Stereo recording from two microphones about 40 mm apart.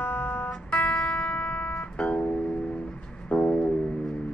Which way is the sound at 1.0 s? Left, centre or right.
Left.